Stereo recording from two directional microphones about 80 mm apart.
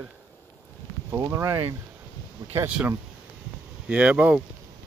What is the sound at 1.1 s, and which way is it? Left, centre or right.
Speech, right.